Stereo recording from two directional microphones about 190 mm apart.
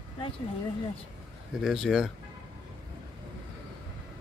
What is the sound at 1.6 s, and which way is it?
Speech, centre (ahead or behind).